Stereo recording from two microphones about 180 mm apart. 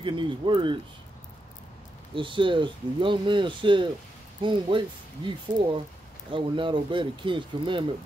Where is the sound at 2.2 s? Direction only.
25° right (ahead or behind).